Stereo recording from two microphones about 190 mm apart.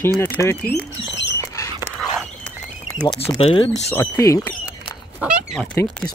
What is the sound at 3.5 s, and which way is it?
Speech, 35° left (ahead or behind).